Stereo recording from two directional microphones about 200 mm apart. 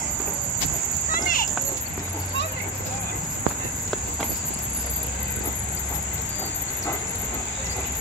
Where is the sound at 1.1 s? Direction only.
45° left (ahead or behind).